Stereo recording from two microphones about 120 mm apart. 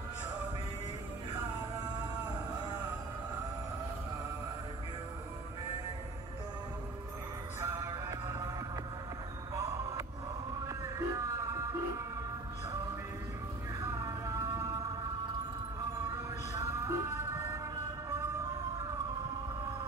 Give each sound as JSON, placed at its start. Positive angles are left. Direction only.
{"t": 1.3, "sound": "a sound", "side_deg": -35}
{"t": 7.6, "sound": "music", "side_deg": -25}
{"t": 9.5, "sound": "music", "side_deg": -25}
{"t": 13.7, "sound": "music", "side_deg": -25}
{"t": 16.5, "sound": "music", "side_deg": -25}